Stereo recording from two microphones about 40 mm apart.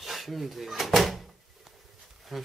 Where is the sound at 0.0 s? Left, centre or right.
Centre.